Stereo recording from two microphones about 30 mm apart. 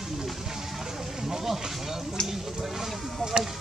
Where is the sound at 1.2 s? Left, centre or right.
Centre.